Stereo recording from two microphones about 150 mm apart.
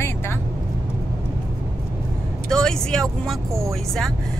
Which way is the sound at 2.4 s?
5° left (ahead or behind).